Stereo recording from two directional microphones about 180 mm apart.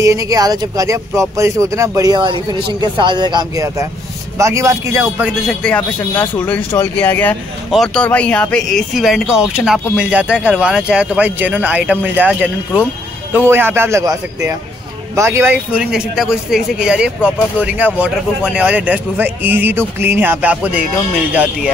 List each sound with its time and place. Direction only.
0.0 s a man's voice: 20° right (ahead or behind)
5.5 s speech: 5° left (ahead or behind)